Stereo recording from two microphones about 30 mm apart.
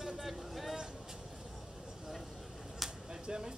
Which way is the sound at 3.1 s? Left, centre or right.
Right.